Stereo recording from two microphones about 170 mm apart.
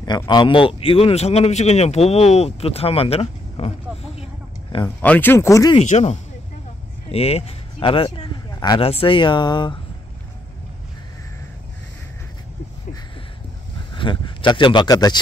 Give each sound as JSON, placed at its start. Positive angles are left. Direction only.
{"t": 0.3, "sound": "speech", "side_deg": 25}
{"t": 4.8, "sound": "speech", "side_deg": 10}
{"t": 5.8, "sound": "speech", "side_deg": 40}
{"t": 13.9, "sound": "speech", "side_deg": 30}